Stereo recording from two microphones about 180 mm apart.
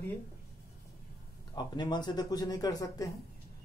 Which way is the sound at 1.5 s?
25° left (ahead or behind).